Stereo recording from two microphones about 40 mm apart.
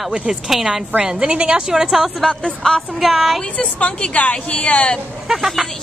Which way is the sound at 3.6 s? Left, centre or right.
Left.